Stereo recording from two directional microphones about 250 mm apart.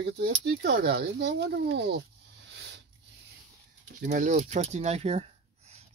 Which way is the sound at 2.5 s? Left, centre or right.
Right.